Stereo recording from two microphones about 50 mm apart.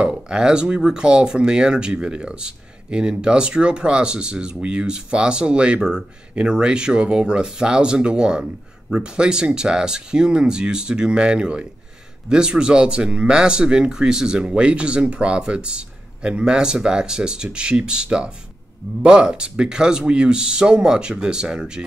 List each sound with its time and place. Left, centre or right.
0.0 s speech: centre